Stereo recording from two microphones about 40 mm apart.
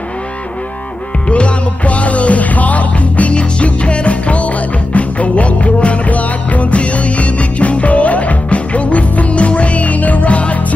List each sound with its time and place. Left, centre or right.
1.3 s music: left